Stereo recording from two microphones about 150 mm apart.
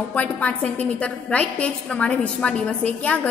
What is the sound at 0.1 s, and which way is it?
A woman's voice, 10° left (ahead or behind).